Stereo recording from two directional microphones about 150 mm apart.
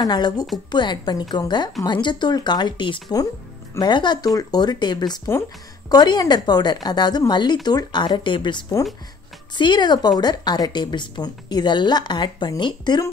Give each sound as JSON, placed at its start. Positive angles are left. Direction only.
{"t": 0.0, "sound": "speech", "side_deg": 25}